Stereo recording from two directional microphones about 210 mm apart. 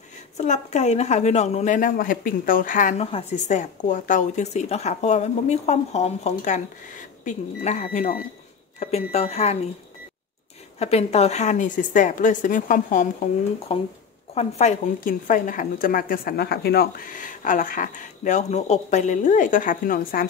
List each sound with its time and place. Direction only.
0.4 s speech: 35° left (ahead or behind)
10.8 s speech: 30° left (ahead or behind)